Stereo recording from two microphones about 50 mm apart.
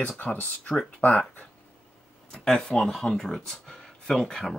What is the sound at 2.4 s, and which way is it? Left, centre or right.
Speech, centre.